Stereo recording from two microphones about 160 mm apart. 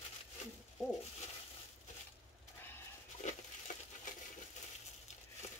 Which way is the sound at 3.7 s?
55° left (ahead or behind).